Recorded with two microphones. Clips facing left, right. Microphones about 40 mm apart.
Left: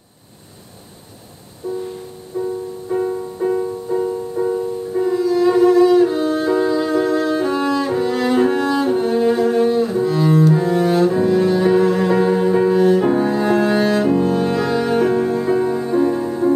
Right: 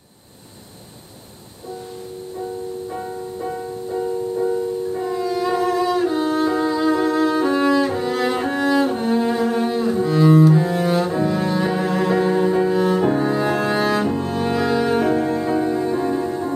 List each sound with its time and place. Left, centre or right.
1.6 s music: left
2.3 s music: centre